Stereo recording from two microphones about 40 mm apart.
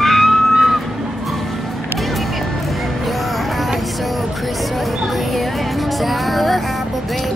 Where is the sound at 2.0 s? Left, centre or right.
Centre.